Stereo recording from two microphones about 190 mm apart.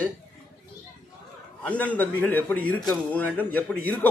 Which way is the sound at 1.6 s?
5° left (ahead or behind).